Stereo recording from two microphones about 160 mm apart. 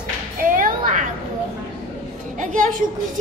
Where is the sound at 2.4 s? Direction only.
55° right (ahead or behind).